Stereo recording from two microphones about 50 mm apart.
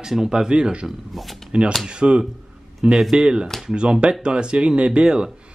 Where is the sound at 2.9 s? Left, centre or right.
Centre.